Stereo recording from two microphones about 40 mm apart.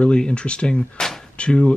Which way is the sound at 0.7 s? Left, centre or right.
Centre.